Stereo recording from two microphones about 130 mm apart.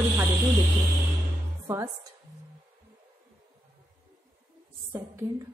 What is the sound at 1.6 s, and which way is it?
Speech, 25° right (ahead or behind).